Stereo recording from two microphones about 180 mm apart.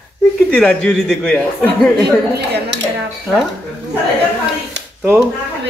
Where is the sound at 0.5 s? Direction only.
5° left (ahead or behind).